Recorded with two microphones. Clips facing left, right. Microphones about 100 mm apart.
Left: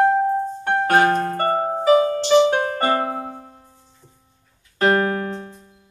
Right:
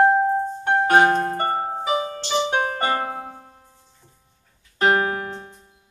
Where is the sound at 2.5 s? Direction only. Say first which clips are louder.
Left 3 dB; 35° left (ahead or behind).